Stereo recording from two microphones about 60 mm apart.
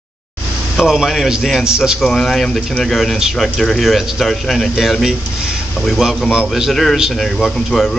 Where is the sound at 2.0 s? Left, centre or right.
Centre.